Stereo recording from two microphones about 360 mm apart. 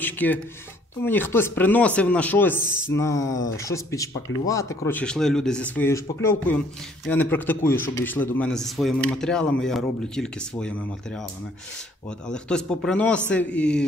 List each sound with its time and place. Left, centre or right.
0.0 s a man's voice: centre
12.3 s a man's voice: centre